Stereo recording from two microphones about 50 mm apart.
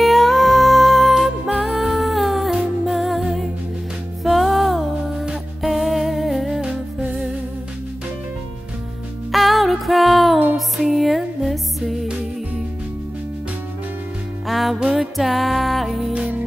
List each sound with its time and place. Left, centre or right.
0.0 s music: centre
6.6 s music: right
9.3 s music: centre
14.5 s music: centre
16.1 s music: right